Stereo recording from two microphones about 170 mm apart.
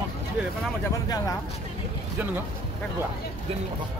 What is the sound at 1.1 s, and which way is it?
Speech, 25° left (ahead or behind).